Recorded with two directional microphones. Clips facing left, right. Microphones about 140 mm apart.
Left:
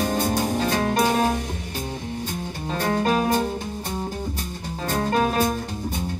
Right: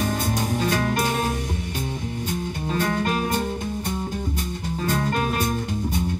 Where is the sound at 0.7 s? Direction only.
25° left (ahead or behind).